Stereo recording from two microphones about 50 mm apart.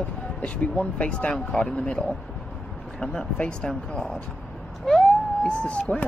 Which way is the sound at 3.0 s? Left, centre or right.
Centre.